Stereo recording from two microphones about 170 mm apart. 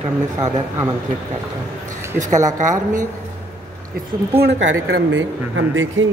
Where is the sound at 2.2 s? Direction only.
45° right (ahead or behind).